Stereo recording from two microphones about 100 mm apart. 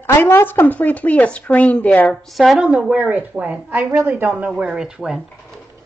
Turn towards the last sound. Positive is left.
turn(degrees=-5)  # may be behind; listen again after turning